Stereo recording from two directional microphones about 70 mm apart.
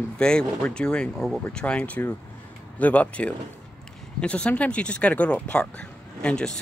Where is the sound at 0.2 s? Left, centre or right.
Centre.